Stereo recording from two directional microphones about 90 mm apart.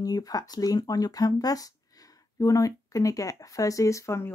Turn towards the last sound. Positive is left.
turn(degrees=30)  # may be behind; listen again after turning